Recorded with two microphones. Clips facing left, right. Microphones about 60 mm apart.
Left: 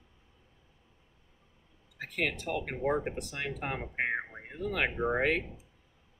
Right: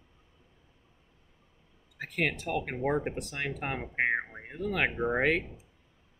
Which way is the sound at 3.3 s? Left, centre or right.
Right.